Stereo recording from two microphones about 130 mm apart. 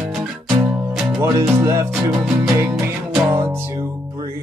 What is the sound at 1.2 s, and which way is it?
Music, 20° right (ahead or behind).